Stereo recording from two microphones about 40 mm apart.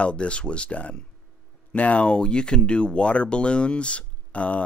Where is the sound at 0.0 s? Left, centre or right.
Left.